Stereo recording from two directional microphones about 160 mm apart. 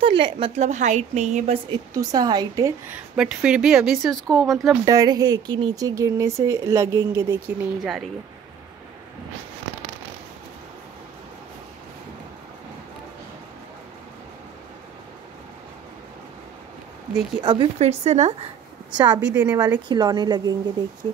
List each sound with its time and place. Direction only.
0.0 s speech: 35° right (ahead or behind)
0.6 s a woman's voice: 50° right (ahead or behind)
2.0 s speech: 25° right (ahead or behind)
2.9 s speech: 5° right (ahead or behind)
4.8 s speech: 25° right (ahead or behind)
17.4 s speech: 30° right (ahead or behind)
17.7 s a woman's voice: 45° right (ahead or behind)
18.9 s speech: 30° right (ahead or behind)
19.3 s speech: 10° right (ahead or behind)
19.9 s speech: 25° right (ahead or behind)